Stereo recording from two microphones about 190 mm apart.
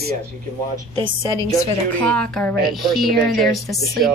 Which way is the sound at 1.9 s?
5° left (ahead or behind).